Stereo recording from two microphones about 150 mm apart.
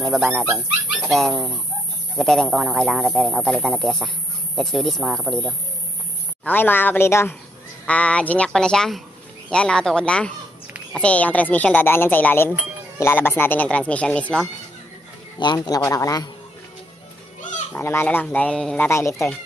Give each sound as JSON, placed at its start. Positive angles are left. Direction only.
{"t": 0.0, "sound": "speech", "side_deg": -5}
{"t": 6.4, "sound": "speech", "side_deg": 10}
{"t": 15.3, "sound": "a man's voice", "side_deg": 30}
{"t": 17.7, "sound": "speech", "side_deg": 15}
{"t": 18.9, "sound": "a man's voice", "side_deg": 20}